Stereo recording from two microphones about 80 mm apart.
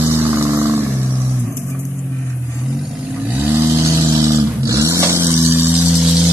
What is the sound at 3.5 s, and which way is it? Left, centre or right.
Vehicle, right.